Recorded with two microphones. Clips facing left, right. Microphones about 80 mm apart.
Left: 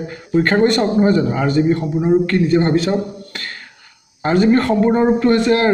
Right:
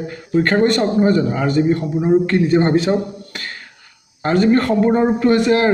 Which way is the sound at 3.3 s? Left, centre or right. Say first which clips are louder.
Even; centre.